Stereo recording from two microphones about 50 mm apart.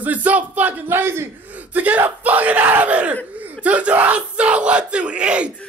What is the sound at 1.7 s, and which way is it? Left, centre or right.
Speech, right.